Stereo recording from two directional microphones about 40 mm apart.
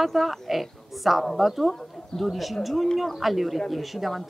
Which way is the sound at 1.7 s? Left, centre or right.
Centre.